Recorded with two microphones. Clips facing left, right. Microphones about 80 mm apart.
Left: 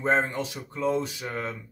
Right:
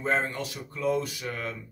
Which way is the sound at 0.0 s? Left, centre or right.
Left.